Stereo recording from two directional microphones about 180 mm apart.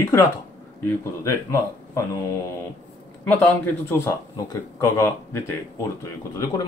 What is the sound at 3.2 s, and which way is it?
Speech, 15° left (ahead or behind).